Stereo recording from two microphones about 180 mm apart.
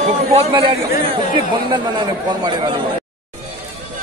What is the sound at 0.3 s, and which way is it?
A man's voice, 30° right (ahead or behind).